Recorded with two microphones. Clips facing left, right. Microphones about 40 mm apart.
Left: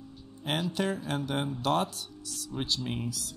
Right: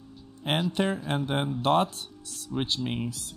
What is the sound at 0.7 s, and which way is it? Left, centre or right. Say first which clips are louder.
Speech: right 3 dB; right.